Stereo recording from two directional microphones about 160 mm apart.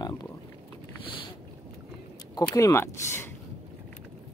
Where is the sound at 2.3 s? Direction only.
20° left (ahead or behind).